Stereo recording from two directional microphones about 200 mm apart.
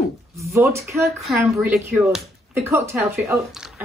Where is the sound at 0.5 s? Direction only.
15° right (ahead or behind).